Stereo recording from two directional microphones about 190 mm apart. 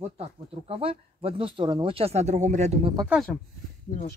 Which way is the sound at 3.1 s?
5° left (ahead or behind).